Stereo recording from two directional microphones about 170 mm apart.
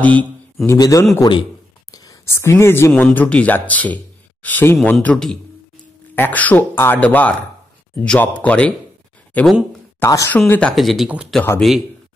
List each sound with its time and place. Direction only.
0.0 s a man's voice: 10° left (ahead or behind)
0.7 s a man's voice: 20° left (ahead or behind); by 9.7 s 5° left (ahead or behind)
9.9 s speech: 15° left (ahead or behind)
10.7 s speech: centre (ahead or behind)